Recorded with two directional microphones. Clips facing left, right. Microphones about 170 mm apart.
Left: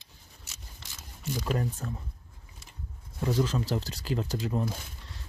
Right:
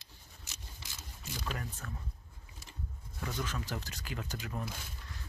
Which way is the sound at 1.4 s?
35° left (ahead or behind).